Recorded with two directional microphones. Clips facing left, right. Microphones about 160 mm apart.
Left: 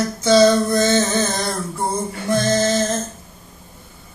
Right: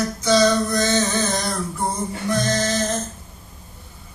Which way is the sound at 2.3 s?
25° left (ahead or behind).